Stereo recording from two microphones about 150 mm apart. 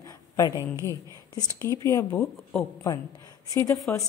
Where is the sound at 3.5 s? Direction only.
20° left (ahead or behind).